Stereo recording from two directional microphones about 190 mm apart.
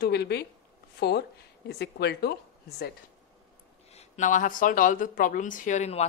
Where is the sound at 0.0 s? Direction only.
60° left (ahead or behind).